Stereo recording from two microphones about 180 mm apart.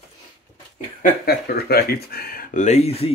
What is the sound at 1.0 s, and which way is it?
Speech, 60° left (ahead or behind).